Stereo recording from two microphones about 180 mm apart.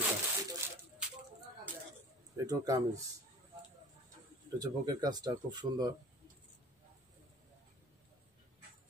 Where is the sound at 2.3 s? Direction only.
20° right (ahead or behind).